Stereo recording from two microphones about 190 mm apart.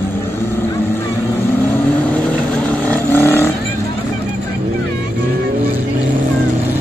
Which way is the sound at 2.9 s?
10° left (ahead or behind).